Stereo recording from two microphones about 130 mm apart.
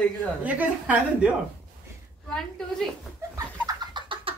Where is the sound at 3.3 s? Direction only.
30° right (ahead or behind).